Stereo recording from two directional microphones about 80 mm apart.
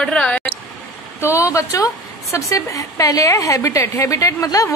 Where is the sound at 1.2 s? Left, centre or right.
Left.